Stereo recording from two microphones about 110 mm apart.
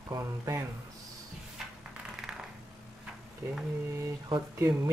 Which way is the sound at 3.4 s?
30° right (ahead or behind).